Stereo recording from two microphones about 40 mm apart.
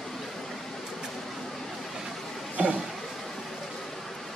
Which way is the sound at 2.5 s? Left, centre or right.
Right.